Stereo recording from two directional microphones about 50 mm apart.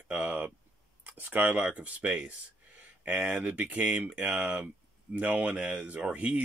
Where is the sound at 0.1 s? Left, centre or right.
Right.